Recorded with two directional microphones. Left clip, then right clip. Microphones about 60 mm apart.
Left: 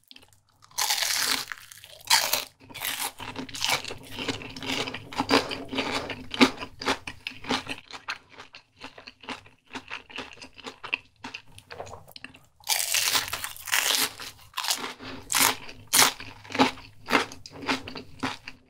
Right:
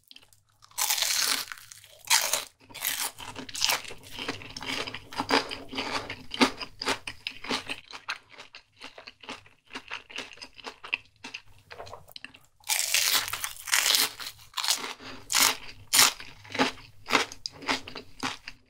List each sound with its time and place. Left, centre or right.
0.7 s crunch: centre; by 3.4 s left
3.7 s crunch: left
4.4 s ratchet: left
4.8 s filing: left
6.0 s crunch: left
7.4 s a sound: centre
11.3 s crunch: centre
15.0 s a sound: centre
15.6 s crunch: centre